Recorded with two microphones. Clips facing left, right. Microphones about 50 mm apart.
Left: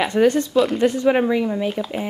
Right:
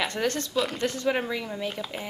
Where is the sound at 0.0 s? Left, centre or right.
Centre.